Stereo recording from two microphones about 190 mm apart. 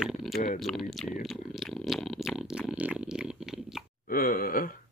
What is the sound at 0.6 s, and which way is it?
Speech, centre (ahead or behind).